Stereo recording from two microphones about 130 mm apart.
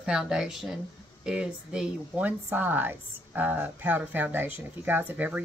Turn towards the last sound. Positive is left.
turn(degrees=-10)  # may be behind; listen again after turning